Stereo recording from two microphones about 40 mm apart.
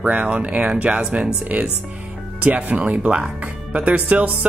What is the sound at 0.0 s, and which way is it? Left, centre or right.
Speech, right.